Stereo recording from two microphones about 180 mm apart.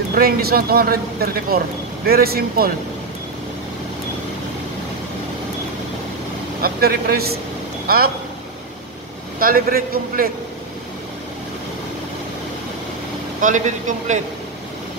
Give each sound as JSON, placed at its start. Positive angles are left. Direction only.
{"t": 0.1, "sound": "speech", "side_deg": -55}
{"t": 6.6, "sound": "speech", "side_deg": -55}
{"t": 9.4, "sound": "a man's voice", "side_deg": -55}
{"t": 13.4, "sound": "a man's voice", "side_deg": -45}